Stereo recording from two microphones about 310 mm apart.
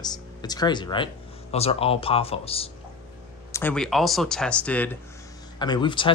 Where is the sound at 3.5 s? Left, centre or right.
Centre.